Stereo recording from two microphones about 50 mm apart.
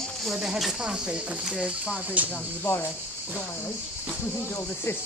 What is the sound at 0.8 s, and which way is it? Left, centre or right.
Speech, centre.